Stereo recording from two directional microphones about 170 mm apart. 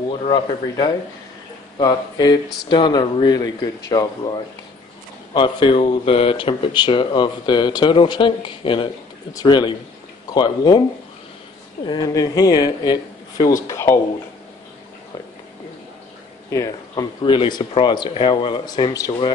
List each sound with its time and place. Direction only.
0.2 s speech: 25° left (ahead or behind)
5.3 s speech: 25° left (ahead or behind)
11.9 s speech: 20° left (ahead or behind)
16.4 s speech: 20° left (ahead or behind)